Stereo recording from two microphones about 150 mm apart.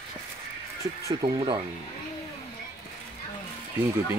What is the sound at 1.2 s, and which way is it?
Speech, 30° right (ahead or behind).